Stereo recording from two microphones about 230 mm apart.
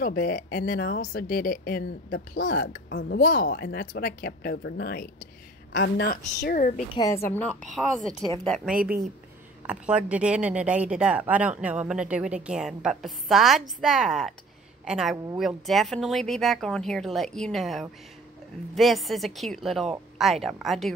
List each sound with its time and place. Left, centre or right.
0.0 s speech: left
2.9 s a woman's voice: left
3.2 s a woman's voice: left
6.9 s a woman's voice: centre
8.7 s speech: right
9.7 s speech: centre